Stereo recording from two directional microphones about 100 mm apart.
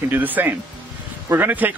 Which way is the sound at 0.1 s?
15° right (ahead or behind).